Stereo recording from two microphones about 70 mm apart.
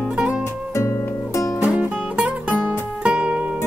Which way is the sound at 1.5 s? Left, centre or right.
Centre.